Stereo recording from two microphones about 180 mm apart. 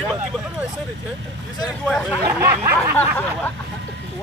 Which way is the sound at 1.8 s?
5° left (ahead or behind).